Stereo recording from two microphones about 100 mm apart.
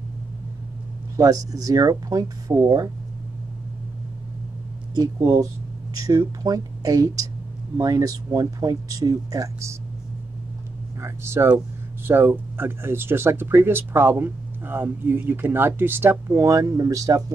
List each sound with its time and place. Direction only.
1.1 s speech: 35° right (ahead or behind)
5.9 s speech: 35° right (ahead or behind)
11.0 s speech: 25° right (ahead or behind)